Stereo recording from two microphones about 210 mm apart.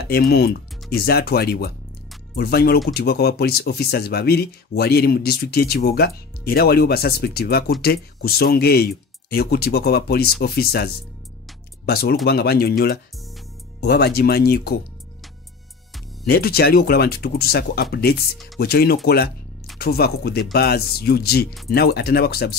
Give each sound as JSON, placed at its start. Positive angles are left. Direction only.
{"t": 0.1, "sound": "speech", "side_deg": 50}
{"t": 16.3, "sound": "speech", "side_deg": 45}